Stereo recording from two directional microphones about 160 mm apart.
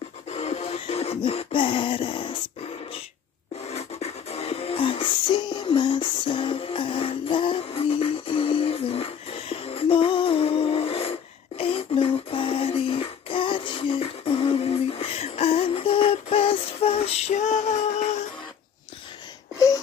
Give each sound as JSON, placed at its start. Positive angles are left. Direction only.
{"t": 0.3, "sound": "music", "side_deg": 40}
{"t": 3.7, "sound": "music", "side_deg": 40}